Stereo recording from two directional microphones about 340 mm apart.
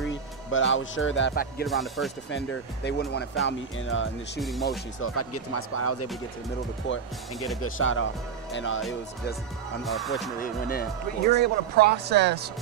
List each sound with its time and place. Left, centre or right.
0.1 s speech: left
1.7 s speech: centre
2.3 s speech: left
4.4 s speech: centre
4.6 s speech: left
7.7 s speech: left
9.8 s speech: centre
10.4 s speech: left
11.3 s speech: right